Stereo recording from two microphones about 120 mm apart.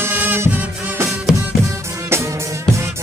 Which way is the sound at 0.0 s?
15° right (ahead or behind).